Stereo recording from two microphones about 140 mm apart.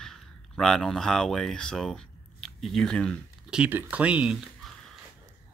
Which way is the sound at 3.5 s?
10° right (ahead or behind).